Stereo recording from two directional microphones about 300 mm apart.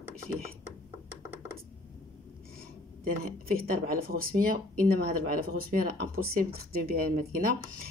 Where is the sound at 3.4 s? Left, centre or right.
Right.